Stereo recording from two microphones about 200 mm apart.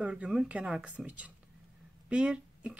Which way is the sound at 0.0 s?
5° right (ahead or behind).